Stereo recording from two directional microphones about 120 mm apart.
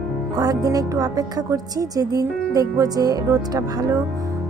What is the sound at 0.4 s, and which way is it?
A woman's voice, 30° right (ahead or behind).